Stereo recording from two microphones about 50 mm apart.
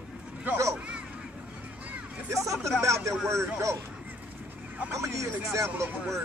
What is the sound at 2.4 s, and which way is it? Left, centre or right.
Speech, right.